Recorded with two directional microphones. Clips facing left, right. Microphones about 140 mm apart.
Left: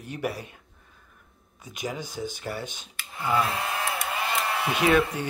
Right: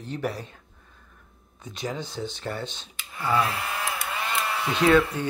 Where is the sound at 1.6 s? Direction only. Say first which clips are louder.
Right 1 dB; 10° left (ahead or behind).